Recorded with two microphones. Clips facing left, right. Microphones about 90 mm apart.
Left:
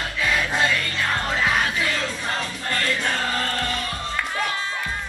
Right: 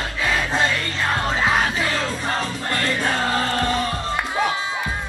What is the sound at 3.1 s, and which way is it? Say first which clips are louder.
Chant: right 4 dB; 20° right (ahead or behind).